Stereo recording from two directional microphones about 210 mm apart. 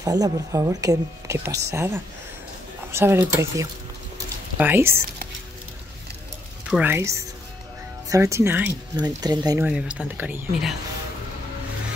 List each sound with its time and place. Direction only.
0.0 s speech: 15° right (ahead or behind)
6.7 s speech: 10° right (ahead or behind)
9.7 s speech: 5° right (ahead or behind)